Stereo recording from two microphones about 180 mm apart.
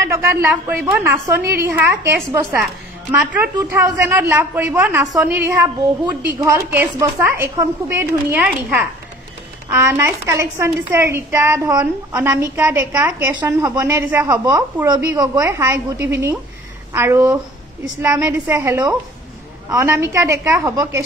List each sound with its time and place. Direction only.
0.0 s a woman's voice: 15° right (ahead or behind)